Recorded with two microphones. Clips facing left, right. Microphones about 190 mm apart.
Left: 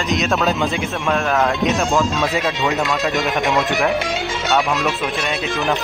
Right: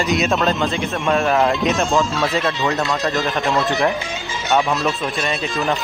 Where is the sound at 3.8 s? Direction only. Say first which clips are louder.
Left 2 dB; 70° left (ahead or behind).